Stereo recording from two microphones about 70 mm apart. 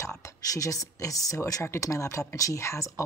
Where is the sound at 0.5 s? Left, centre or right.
Left.